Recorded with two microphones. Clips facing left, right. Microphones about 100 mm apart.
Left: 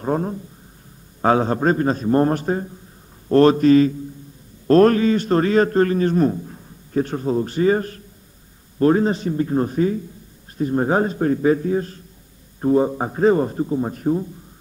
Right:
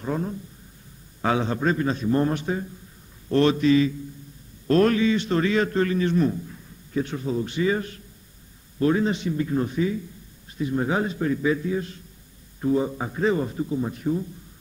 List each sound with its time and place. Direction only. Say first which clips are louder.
0.0 s a man's voice: left 6 dB; 45° left (ahead or behind)